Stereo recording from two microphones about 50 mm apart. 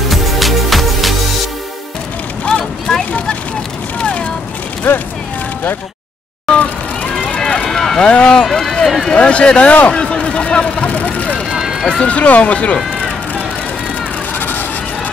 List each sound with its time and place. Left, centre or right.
0.1 s music: centre
2.4 s a sound: left
4.9 s speech: left
7.3 s run: centre
7.7 s vehicle: centre
8.0 s run: centre
8.5 s run: centre
9.1 s speech: left
9.9 s vehicle: centre
11.5 s run: centre
11.8 s speech: centre